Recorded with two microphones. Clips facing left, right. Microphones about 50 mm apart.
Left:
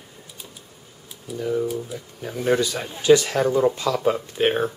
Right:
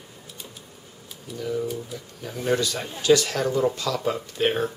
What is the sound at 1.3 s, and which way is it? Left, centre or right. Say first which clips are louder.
Speech: left 4 dB; centre.